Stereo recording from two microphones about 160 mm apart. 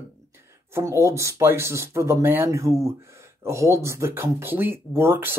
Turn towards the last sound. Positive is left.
turn(degrees=-15)  # may be behind; listen again after turning